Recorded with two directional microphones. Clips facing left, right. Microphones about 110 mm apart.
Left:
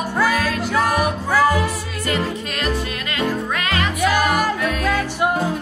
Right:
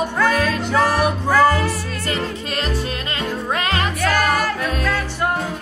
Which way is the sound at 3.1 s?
30° right (ahead or behind).